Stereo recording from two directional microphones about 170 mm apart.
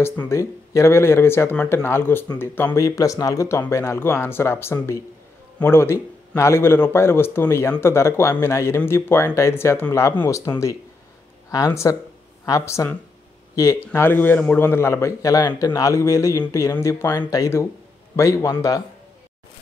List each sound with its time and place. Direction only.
0.0 s a man's voice: 15° left (ahead or behind)